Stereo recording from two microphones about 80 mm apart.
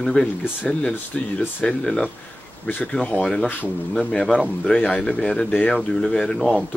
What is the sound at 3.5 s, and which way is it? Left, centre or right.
Speech, centre.